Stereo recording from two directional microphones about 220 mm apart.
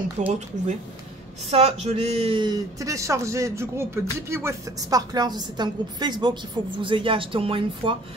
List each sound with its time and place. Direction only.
0.2 s speech: 35° right (ahead or behind)
1.5 s a woman's voice: 30° right (ahead or behind)